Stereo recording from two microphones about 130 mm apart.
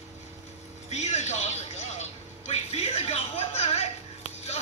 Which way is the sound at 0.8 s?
60° left (ahead or behind).